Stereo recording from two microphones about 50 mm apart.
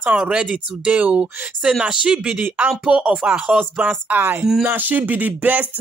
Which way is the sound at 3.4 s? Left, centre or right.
Right.